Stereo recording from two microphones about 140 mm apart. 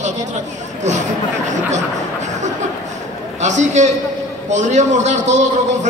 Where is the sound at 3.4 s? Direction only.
60° right (ahead or behind).